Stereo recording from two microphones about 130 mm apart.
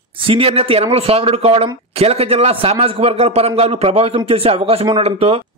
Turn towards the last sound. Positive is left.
turn(degrees=-50)  # may be behind; listen again after turning